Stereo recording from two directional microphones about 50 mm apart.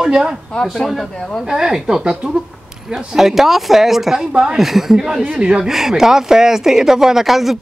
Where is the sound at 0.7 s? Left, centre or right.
Centre.